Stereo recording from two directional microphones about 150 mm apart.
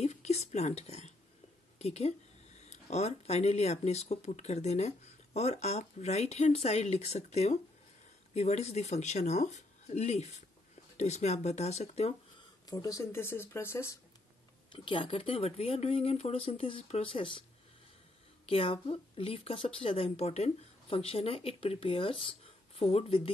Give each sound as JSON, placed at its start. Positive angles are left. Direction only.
{"t": 0.0, "sound": "speech", "side_deg": 45}
{"t": 12.6, "sound": "speech", "side_deg": 25}
{"t": 14.7, "sound": "a woman's voice", "side_deg": 35}